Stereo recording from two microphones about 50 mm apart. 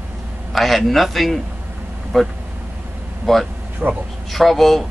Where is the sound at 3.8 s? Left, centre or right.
Right.